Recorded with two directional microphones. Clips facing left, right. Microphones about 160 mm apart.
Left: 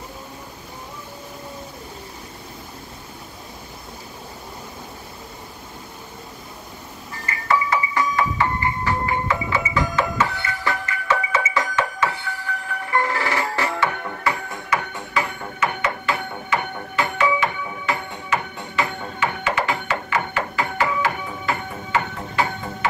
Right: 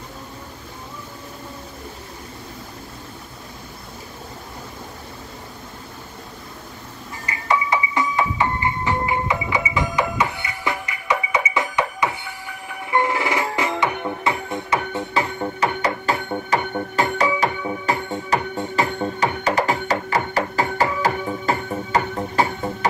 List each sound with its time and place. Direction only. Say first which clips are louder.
7.2 s music: even; 20° right (ahead or behind); by 22.8 s 40° right (ahead or behind)